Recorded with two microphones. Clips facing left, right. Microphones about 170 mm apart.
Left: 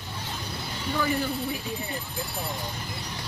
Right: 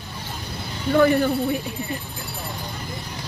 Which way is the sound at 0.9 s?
60° right (ahead or behind).